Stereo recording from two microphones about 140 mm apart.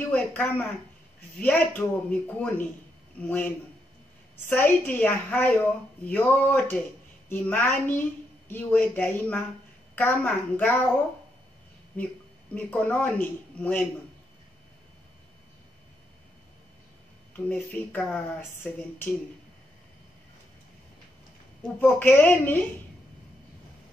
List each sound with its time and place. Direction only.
0.1 s speech: 15° left (ahead or behind)
12.0 s speech: 10° left (ahead or behind)
17.5 s speech: 10° left (ahead or behind)
21.7 s speech: 15° left (ahead or behind)